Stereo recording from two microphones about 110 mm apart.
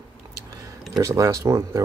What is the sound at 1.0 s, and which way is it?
Speech, 30° right (ahead or behind).